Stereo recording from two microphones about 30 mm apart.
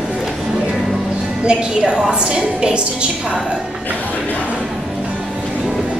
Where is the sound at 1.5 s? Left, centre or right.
Right.